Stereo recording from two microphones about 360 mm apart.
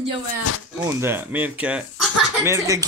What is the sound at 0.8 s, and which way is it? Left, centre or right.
Speech, centre.